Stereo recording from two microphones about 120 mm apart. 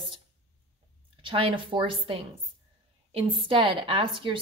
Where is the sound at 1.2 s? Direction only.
45° right (ahead or behind).